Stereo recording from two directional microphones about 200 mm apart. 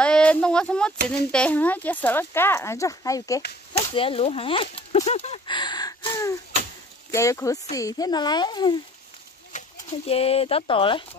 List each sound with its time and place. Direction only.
0.0 s a sound: 5° left (ahead or behind)
1.3 s speech: 5° left (ahead or behind)
3.9 s speech: 25° left (ahead or behind)
9.5 s speech: 30° left (ahead or behind)